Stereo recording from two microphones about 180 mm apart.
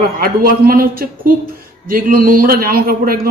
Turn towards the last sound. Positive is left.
turn(degrees=-55)  # may be behind; listen again after turning